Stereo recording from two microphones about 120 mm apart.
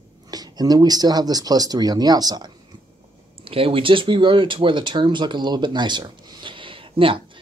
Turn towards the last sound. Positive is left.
turn(degrees=-50)  # may be behind; listen again after turning